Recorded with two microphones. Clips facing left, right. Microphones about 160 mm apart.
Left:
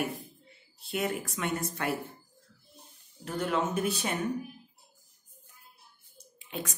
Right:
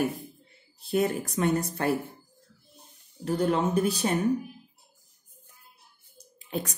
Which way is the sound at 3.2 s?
35° right (ahead or behind).